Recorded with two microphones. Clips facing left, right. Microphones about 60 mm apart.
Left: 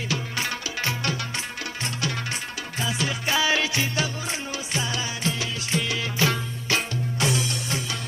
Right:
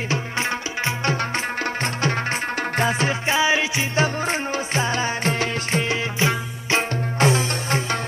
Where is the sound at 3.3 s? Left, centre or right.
Right.